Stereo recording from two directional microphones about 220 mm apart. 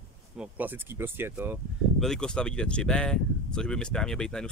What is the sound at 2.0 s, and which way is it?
Speech, 5° left (ahead or behind).